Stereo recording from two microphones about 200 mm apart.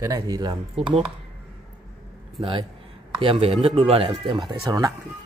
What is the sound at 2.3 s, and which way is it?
A man's voice, 25° right (ahead or behind).